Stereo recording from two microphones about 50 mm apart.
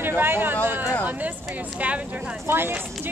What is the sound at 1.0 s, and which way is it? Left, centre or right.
Speech, right.